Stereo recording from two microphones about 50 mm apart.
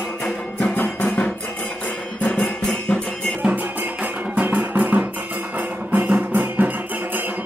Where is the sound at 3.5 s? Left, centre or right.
Right.